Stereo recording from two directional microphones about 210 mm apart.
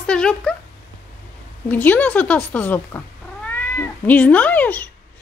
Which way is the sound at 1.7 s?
10° left (ahead or behind).